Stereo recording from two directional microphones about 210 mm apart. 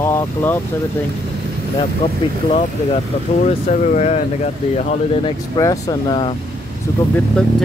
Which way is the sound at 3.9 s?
35° left (ahead or behind).